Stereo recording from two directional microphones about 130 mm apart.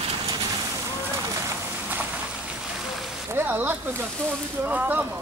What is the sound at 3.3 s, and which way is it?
Speech, 15° right (ahead or behind).